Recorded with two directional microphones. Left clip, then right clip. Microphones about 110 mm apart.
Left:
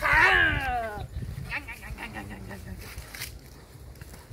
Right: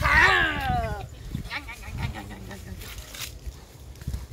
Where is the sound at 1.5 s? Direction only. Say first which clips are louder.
Even; 25° left (ahead or behind).